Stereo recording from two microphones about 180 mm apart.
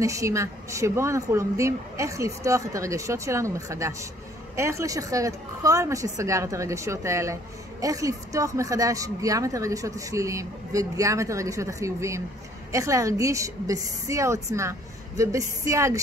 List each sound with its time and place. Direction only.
0.0 s a woman's voice: 15° right (ahead or behind)